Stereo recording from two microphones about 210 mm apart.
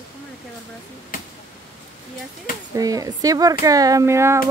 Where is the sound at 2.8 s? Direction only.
15° right (ahead or behind).